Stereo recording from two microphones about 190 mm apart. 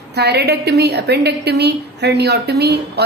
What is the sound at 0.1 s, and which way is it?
A woman's voice, 60° right (ahead or behind).